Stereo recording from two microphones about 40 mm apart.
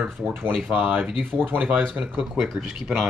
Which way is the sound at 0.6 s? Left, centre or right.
Right.